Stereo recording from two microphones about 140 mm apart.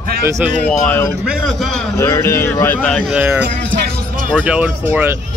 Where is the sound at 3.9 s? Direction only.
90° right.